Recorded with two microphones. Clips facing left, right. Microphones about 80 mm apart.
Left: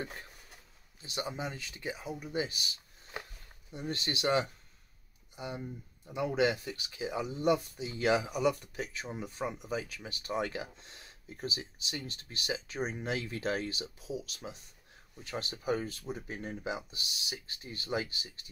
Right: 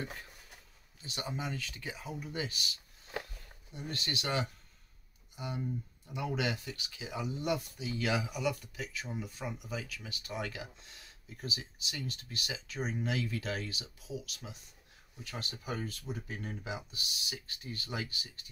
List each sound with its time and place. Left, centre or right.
1.0 s speech: left